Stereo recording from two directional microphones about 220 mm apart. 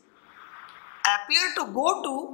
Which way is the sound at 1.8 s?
15° left (ahead or behind).